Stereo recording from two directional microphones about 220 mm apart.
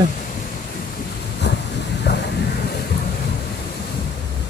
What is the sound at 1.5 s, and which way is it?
Vehicle, 50° left (ahead or behind).